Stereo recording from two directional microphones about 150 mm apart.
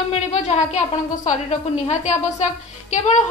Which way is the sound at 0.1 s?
45° left (ahead or behind).